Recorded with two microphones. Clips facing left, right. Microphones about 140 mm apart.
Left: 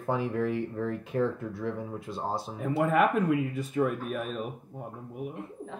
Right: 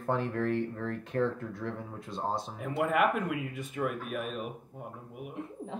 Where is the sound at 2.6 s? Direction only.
35° left (ahead or behind).